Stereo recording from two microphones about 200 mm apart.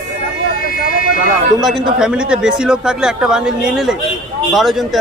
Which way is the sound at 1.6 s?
Centre (ahead or behind).